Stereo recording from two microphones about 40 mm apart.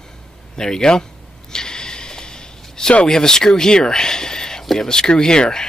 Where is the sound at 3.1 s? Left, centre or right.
Centre.